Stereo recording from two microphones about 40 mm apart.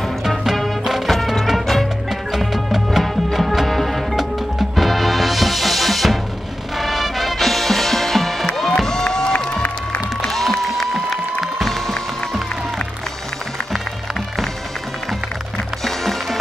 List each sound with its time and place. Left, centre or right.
0.3 s music: centre
1.1 s music: centre
2.0 s music: centre
8.7 s music: centre
10.3 s music: centre
15.8 s music: centre